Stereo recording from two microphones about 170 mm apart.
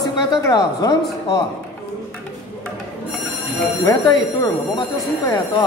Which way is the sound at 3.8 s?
25° left (ahead or behind).